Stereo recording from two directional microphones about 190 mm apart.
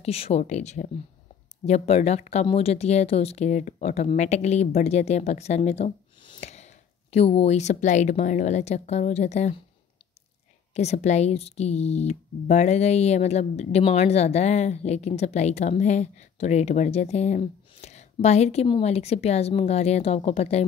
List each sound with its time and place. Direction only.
0.0 s speech: 35° left (ahead or behind)
10.7 s speech: 35° left (ahead or behind)